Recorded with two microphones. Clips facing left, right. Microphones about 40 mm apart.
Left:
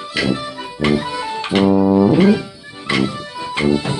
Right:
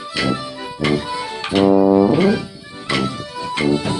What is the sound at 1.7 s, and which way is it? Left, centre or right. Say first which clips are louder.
Music: right 2 dB; right.